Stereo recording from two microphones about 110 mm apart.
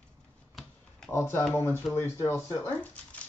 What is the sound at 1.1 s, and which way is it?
Speech, 20° left (ahead or behind).